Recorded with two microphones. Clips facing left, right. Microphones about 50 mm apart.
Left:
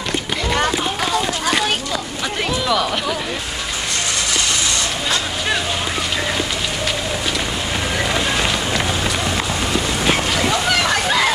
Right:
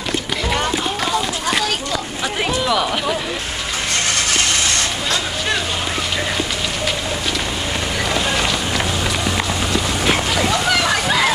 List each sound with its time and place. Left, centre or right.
2.6 s speech: centre
4.1 s vehicle: right
8.1 s run: centre
10.5 s slosh: centre